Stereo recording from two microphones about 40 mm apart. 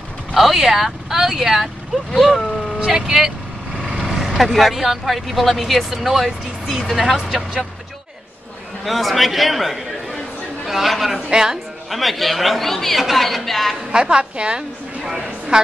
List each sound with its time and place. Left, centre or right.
0.3 s a man's voice: centre
2.9 s vehicle: centre
4.5 s a man's voice: centre
8.8 s a man's voice: centre
11.1 s speech: centre
11.9 s a man's voice: centre
13.9 s a woman's voice: right